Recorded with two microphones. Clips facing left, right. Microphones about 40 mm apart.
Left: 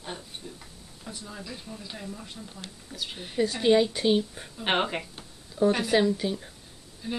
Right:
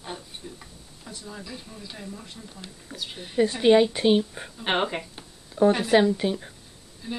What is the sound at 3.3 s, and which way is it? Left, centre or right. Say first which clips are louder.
A woman's voice: right 4 dB; centre.